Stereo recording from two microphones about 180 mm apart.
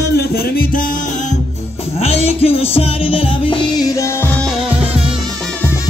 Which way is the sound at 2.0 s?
35° left (ahead or behind).